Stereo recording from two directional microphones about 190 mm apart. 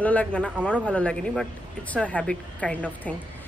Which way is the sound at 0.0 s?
5° left (ahead or behind).